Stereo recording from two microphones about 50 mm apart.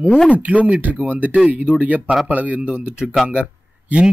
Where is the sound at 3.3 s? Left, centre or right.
Right.